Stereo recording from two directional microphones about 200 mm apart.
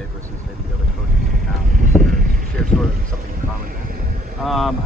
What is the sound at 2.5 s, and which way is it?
Speech, centre (ahead or behind).